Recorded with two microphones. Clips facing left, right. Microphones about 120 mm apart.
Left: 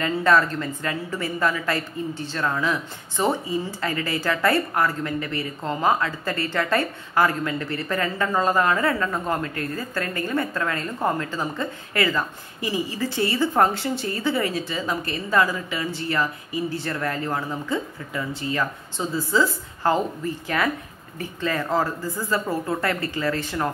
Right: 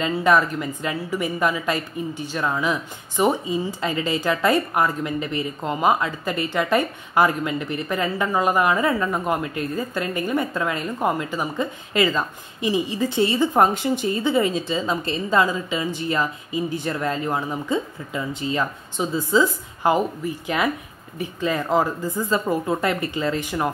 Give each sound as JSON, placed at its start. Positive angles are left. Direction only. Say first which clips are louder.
{"t": 0.0, "sound": "a woman's voice", "louder": "right 1 dB", "side_deg": -15}